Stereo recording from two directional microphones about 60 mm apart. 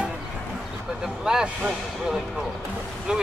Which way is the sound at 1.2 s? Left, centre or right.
Centre.